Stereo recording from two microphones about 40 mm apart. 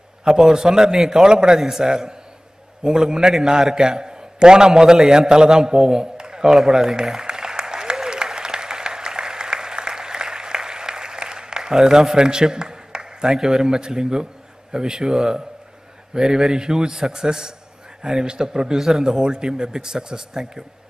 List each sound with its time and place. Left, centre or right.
0.2 s a man's voice: centre
6.5 s applause: centre
14.7 s a man's voice: centre